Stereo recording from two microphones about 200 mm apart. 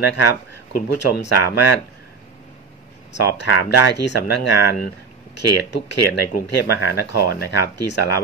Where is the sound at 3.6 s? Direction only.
55° left (ahead or behind).